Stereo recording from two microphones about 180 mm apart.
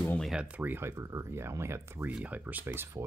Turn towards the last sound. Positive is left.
turn(degrees=-15)  # may be behind; listen again after turning